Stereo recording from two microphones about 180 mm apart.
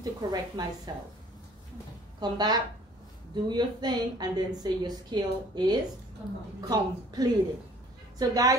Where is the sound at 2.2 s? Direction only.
25° right (ahead or behind).